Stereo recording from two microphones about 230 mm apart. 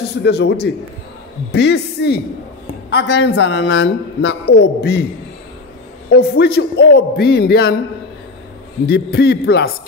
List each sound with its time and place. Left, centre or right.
0.2 s a man's voice: left
6.1 s a man's voice: left
8.8 s a man's voice: left